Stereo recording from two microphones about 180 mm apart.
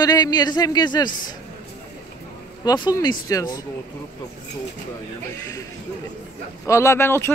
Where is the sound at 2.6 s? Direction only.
20° left (ahead or behind).